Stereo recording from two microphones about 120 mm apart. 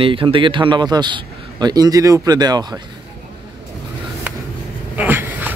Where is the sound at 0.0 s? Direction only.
45° right (ahead or behind).